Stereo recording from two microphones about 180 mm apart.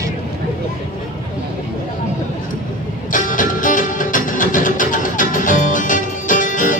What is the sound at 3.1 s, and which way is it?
Music, 45° left (ahead or behind).